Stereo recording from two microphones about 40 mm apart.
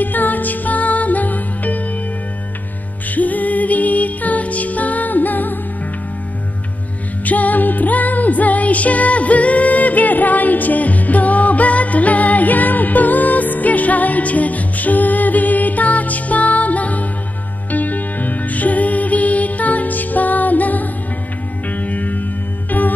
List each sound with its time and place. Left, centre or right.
0.0 s music: left
3.2 s music: left
7.2 s music: left